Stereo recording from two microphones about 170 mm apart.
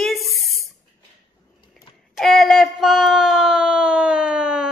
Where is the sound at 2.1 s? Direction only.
Centre (ahead or behind).